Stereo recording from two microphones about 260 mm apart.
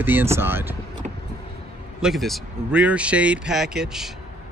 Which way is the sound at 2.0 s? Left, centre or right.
Centre.